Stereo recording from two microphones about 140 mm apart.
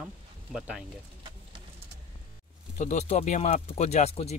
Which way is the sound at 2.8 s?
55° left (ahead or behind).